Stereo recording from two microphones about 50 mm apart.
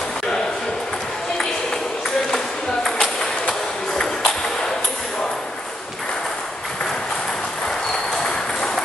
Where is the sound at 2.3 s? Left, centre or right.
Centre.